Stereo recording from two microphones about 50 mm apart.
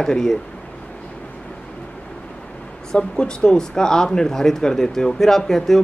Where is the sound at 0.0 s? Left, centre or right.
Centre.